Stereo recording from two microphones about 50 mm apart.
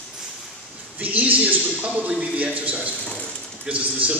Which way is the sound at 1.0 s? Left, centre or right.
Right.